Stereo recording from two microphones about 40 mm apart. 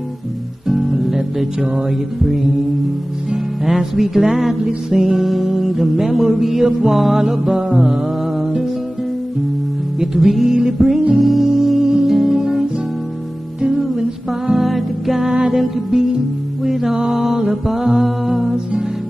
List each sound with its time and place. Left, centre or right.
0.7 s music: centre
3.6 s music: centre
9.9 s music: centre
12.4 s music: centre
14.5 s music: centre
15.2 s music: centre